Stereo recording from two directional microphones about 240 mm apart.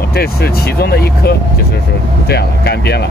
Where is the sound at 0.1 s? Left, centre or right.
Left.